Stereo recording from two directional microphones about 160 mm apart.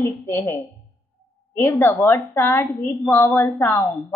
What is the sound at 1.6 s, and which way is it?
A woman's voice, 15° left (ahead or behind).